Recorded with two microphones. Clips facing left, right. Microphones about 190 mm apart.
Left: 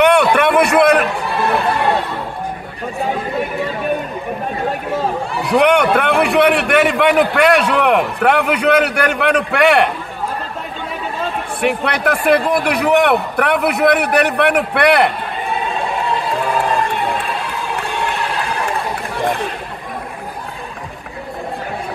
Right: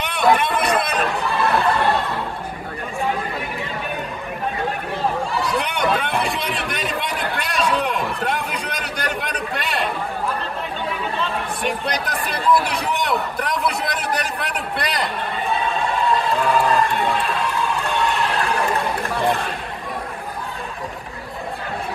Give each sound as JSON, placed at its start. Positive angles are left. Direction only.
{"t": 0.0, "sound": "a sound", "side_deg": 70}
{"t": 5.4, "sound": "a man's voice", "side_deg": 65}
{"t": 11.6, "sound": "a man's voice", "side_deg": 70}